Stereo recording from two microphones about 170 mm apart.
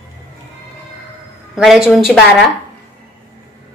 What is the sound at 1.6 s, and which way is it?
Speech, centre (ahead or behind).